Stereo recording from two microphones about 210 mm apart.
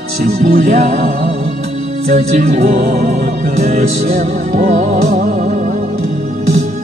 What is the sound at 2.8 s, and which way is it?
Music, 50° right (ahead or behind).